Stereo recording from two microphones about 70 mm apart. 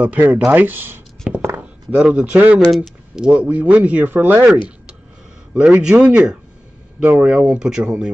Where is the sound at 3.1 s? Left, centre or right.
Centre.